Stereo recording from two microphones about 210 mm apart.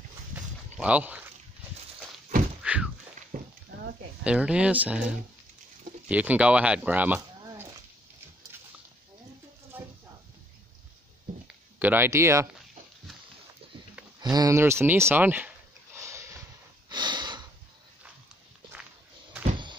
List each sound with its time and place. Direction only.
0.3 s a sound: 5° right (ahead or behind)
2.6 s thunk: 5° right (ahead or behind)
3.3 s stir: 40° right (ahead or behind)
3.7 s a sound: 45° right (ahead or behind)
4.2 s speech: 5° right (ahead or behind)
6.0 s speech: 5° right (ahead or behind)
11.8 s speech: 10° right (ahead or behind)
14.3 s a sound: 15° right (ahead or behind)
16.9 s breathing: 20° right (ahead or behind)